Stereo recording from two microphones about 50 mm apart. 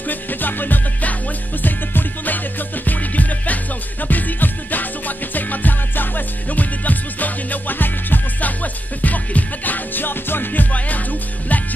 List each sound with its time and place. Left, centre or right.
0.0 s music: left